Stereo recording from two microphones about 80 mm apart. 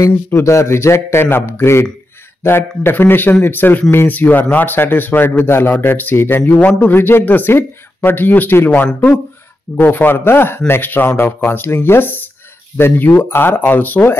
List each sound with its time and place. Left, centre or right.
0.0 s a man's voice: left